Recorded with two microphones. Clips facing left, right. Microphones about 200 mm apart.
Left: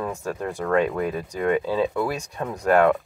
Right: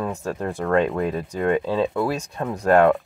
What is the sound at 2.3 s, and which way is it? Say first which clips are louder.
Speech: right 2 dB; 25° right (ahead or behind).